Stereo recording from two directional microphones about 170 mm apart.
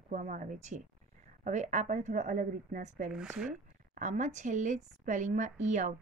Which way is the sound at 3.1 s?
5° right (ahead or behind).